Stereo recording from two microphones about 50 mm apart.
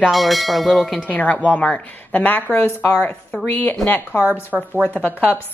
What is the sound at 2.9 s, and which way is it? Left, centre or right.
Speech, centre.